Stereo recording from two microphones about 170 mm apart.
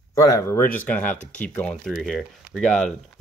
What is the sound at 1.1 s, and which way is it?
Speech, 45° left (ahead or behind).